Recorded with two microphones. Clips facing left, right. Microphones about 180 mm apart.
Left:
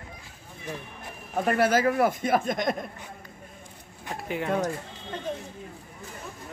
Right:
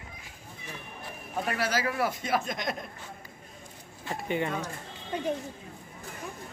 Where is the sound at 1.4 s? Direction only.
50° left (ahead or behind).